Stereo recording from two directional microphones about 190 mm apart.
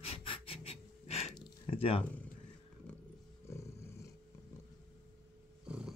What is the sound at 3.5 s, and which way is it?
Roar, 15° left (ahead or behind).